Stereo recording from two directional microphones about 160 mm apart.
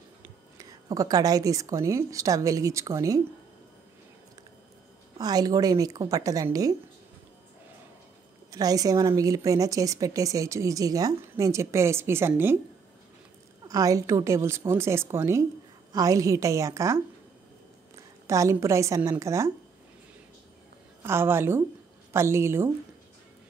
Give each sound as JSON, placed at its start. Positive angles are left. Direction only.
{"t": 0.2, "sound": "speech", "side_deg": -20}
{"t": 5.1, "sound": "a woman's voice", "side_deg": -25}
{"t": 8.5, "sound": "a woman's voice", "side_deg": -20}
{"t": 13.7, "sound": "a woman's voice", "side_deg": -20}
{"t": 21.0, "sound": "a woman's voice", "side_deg": -15}